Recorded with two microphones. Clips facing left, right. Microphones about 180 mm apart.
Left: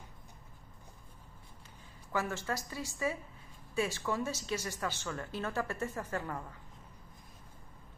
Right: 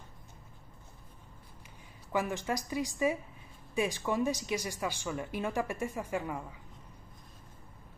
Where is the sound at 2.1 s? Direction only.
15° right (ahead or behind).